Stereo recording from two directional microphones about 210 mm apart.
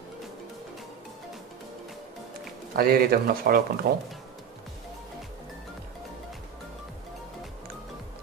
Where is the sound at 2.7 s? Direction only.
45° right (ahead or behind).